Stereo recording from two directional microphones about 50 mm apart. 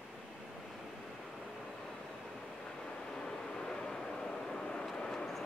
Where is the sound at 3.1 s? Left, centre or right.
Centre.